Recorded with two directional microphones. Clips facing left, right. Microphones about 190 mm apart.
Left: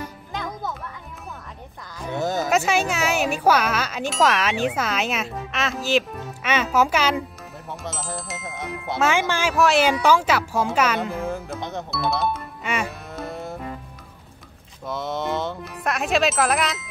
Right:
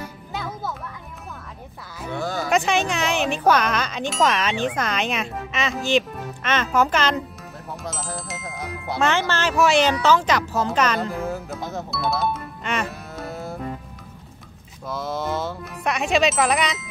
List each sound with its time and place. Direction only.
0.3 s music: 5° right (ahead or behind)
2.1 s a sound: 20° left (ahead or behind)
2.5 s speech: 5° left (ahead or behind)
7.8 s music: centre (ahead or behind)
9.6 s speech: 5° left (ahead or behind)
14.9 s speech: centre (ahead or behind)